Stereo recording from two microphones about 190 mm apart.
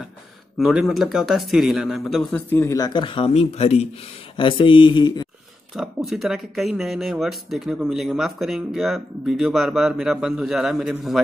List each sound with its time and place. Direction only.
0.6 s speech: centre (ahead or behind)
2.5 s speech: 15° left (ahead or behind)
5.8 s speech: centre (ahead or behind)